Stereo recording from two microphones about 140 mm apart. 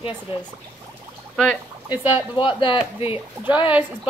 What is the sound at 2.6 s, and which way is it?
Speech, 40° left (ahead or behind).